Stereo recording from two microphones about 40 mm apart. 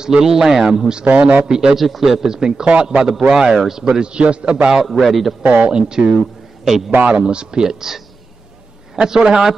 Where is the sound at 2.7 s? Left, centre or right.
Right.